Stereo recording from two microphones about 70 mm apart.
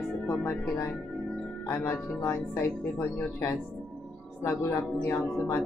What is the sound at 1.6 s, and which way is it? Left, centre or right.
Speech, left.